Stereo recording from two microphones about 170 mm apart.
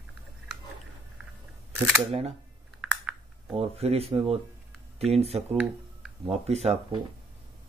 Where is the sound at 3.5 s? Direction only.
35° right (ahead or behind).